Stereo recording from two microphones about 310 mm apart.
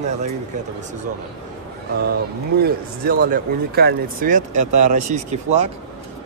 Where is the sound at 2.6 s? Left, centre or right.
Right.